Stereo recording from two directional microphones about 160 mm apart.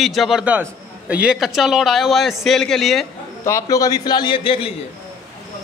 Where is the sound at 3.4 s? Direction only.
20° left (ahead or behind).